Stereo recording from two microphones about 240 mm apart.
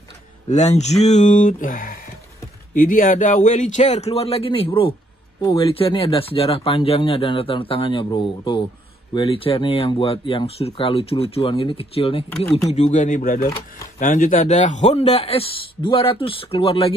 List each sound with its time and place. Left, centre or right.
0.5 s speech: left
12.3 s speech: centre
12.6 s speech: left